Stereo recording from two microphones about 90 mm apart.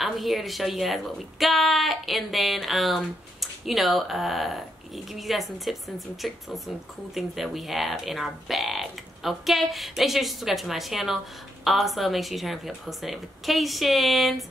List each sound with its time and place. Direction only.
0.0 s a woman's voice: centre (ahead or behind)